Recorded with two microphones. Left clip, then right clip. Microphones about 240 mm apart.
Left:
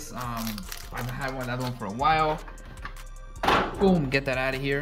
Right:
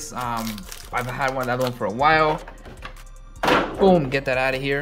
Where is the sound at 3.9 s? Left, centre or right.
Centre.